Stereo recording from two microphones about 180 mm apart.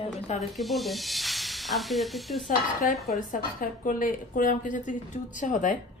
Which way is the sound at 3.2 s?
50° left (ahead or behind).